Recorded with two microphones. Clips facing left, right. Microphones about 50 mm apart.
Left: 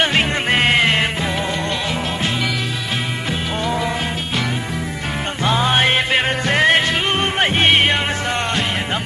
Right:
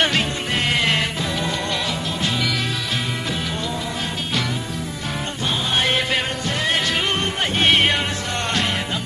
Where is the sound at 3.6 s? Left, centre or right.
Left.